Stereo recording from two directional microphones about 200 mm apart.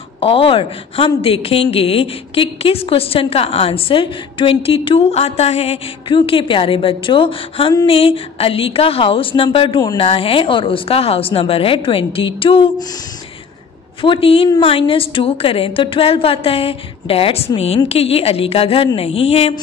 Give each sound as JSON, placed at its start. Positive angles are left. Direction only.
{"t": 0.2, "sound": "a woman's voice", "side_deg": 30}
{"t": 14.0, "sound": "a woman's voice", "side_deg": 25}